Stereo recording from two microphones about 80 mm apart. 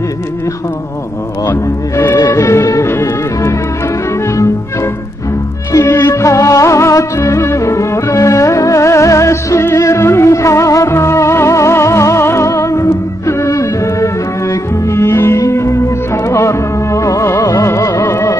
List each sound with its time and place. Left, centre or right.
1.5 s speech: left
2.2 s music: left
5.9 s music: left